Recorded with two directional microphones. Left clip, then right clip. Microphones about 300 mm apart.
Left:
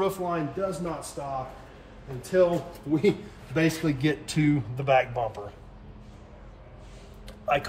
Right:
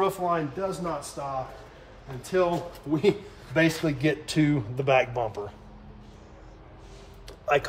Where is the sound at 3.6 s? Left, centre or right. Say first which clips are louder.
Even; right.